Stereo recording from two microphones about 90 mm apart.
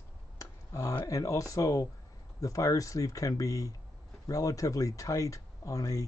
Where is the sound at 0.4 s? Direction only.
35° left (ahead or behind).